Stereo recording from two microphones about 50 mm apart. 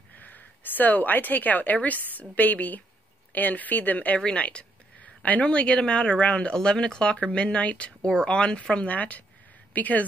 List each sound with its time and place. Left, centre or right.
0.2 s a woman's voice: left
4.2 s a woman's voice: left